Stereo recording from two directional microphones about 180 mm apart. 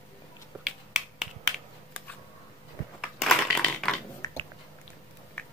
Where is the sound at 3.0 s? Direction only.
Centre (ahead or behind).